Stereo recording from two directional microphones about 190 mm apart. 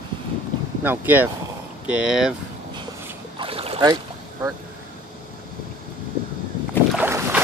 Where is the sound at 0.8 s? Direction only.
10° right (ahead or behind).